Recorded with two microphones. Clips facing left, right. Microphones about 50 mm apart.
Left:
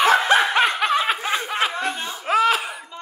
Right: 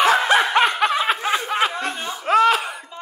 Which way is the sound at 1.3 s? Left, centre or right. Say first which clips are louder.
Right 2 dB; centre.